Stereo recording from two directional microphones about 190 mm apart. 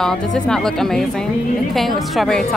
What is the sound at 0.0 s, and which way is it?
A woman's voice, 5° left (ahead or behind).